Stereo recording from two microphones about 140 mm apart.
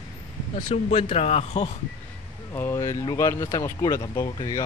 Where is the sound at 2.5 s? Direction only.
20° left (ahead or behind).